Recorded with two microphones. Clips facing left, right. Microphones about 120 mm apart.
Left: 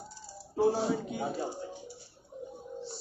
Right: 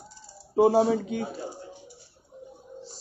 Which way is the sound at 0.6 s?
80° right.